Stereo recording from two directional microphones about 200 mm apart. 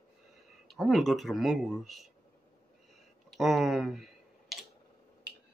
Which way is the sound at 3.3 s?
Centre (ahead or behind).